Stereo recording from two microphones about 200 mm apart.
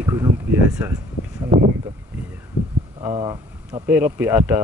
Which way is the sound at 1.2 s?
40° left (ahead or behind).